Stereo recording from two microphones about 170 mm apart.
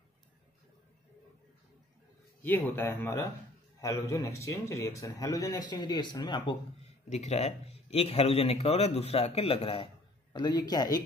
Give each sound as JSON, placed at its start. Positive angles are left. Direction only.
{"t": 2.4, "sound": "a man's voice", "side_deg": 10}
{"t": 7.1, "sound": "a man's voice", "side_deg": 40}